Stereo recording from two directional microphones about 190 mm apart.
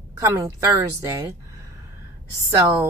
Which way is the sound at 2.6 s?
20° right (ahead or behind).